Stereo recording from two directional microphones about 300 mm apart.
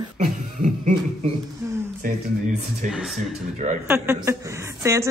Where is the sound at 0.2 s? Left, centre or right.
Right.